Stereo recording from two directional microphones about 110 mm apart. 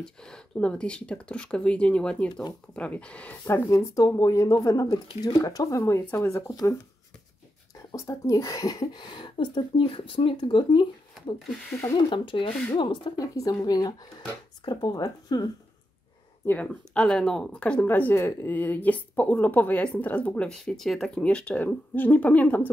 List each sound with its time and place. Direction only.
0.0 s speech: 5° left (ahead or behind)
3.4 s speech: 25° left (ahead or behind)
7.9 s speech: 30° left (ahead or behind); by 10.9 s 50° left (ahead or behind)
11.3 s speech: centre (ahead or behind)
12.1 s speech: 50° left (ahead or behind)
16.4 s speech: 10° left (ahead or behind)